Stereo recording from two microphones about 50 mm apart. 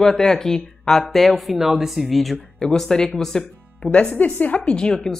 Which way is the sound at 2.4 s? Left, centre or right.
Centre.